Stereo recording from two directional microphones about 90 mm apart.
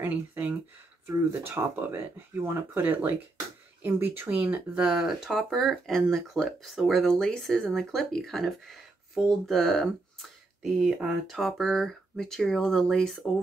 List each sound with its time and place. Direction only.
0.0 s speech: 20° right (ahead or behind)
1.0 s speech: 30° right (ahead or behind); by 10.2 s 5° left (ahead or behind)
10.6 s speech: 5° right (ahead or behind)